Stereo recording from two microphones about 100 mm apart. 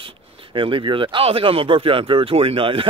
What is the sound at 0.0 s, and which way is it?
Speech, 60° right (ahead or behind).